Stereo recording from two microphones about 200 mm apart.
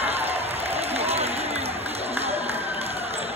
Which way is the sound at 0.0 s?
30° right (ahead or behind).